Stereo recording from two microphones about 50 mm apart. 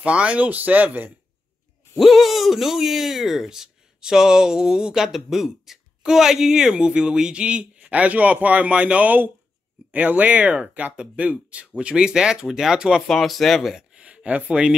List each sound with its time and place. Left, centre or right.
0.0 s speech: right
2.0 s speech: centre
13.0 s speech: centre
13.9 s a sound: right